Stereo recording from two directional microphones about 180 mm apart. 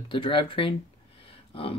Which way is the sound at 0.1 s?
30° left (ahead or behind).